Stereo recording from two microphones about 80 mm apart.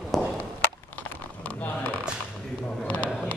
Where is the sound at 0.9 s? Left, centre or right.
Centre.